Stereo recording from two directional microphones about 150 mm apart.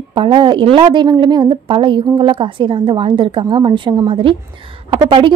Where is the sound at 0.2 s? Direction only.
35° right (ahead or behind).